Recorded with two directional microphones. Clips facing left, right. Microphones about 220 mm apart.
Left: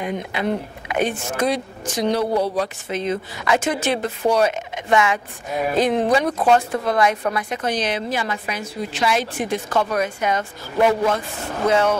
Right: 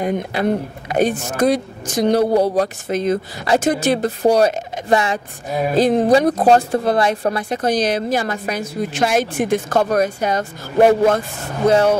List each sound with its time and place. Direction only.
0.0 s a woman's voice: 40° right (ahead or behind)